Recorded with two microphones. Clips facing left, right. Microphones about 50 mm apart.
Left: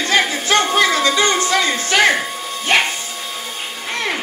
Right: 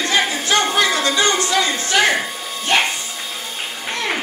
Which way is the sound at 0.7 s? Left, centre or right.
Left.